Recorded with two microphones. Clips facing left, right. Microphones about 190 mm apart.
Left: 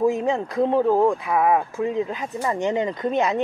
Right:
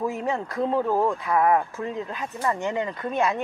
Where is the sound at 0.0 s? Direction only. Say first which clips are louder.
Left 6 dB; 15° left (ahead or behind).